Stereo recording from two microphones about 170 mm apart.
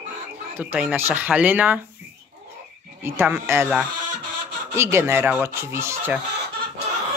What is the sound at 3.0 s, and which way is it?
Speech, 10° right (ahead or behind).